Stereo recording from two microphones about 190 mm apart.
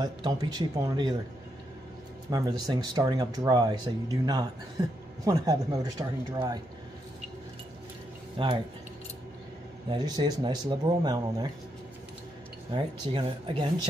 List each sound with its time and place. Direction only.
0.0 s speech: 20° right (ahead or behind)
2.3 s speech: 20° right (ahead or behind)
8.4 s speech: 30° right (ahead or behind)
9.8 s speech: 20° right (ahead or behind)
12.7 s speech: 25° right (ahead or behind)